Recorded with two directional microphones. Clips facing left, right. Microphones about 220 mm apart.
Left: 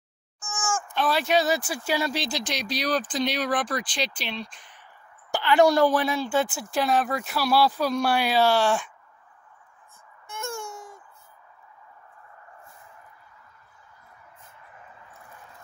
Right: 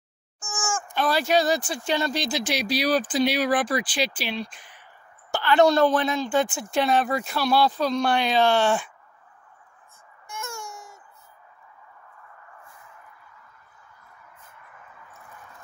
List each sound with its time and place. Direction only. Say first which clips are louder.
0.4 s a sound: right 1 dB; 30° right (ahead or behind)
0.7 s speech: right 1 dB; centre (ahead or behind)
5.3 s a woman's voice: right 1 dB; 15° left (ahead or behind); by 8.9 s centre (ahead or behind)